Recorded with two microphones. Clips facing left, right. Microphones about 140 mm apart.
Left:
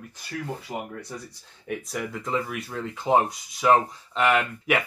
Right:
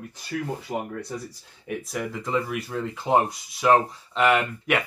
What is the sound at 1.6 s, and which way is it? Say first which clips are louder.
Speech: right 1 dB; centre (ahead or behind).